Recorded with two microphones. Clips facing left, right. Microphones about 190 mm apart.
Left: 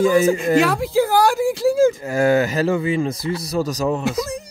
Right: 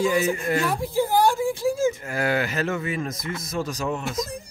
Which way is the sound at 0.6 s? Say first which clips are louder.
Left 7 dB; 90° left.